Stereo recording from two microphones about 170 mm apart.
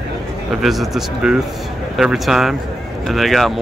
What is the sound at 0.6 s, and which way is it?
Speech, centre (ahead or behind).